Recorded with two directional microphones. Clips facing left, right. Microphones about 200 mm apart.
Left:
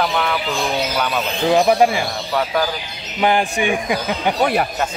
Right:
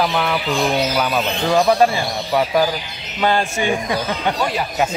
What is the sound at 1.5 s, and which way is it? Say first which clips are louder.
Speech: even; 15° left (ahead or behind).